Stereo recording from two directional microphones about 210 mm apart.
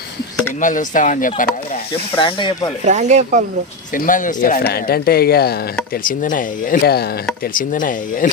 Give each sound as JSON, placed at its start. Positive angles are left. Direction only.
{"t": 0.6, "sound": "speech", "side_deg": 40}
{"t": 2.1, "sound": "speech", "side_deg": 25}
{"t": 2.8, "sound": "speech", "side_deg": -35}
{"t": 3.9, "sound": "speech", "side_deg": 40}